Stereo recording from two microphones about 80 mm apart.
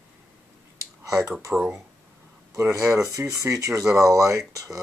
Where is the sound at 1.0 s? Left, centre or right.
Right.